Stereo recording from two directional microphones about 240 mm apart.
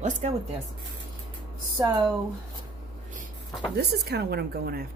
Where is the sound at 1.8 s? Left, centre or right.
Centre.